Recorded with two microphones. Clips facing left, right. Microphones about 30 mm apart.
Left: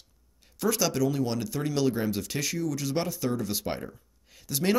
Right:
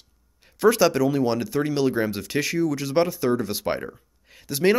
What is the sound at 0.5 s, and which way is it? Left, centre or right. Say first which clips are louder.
Speech: right 8 dB; right.